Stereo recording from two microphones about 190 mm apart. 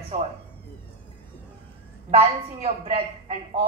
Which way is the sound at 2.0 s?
30° right (ahead or behind).